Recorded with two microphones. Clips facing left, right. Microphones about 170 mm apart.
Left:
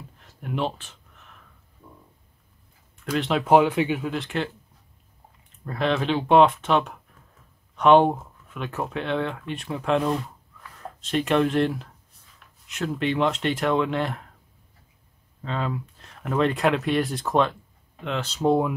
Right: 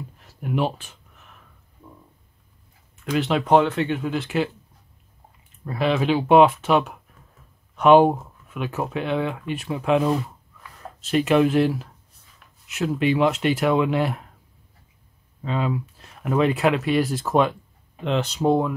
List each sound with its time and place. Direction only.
0.2 s speech: 10° right (ahead or behind)
3.1 s speech: centre (ahead or behind)
5.7 s speech: 5° right (ahead or behind)
15.4 s speech: 10° right (ahead or behind)
18.0 s speech: 20° right (ahead or behind)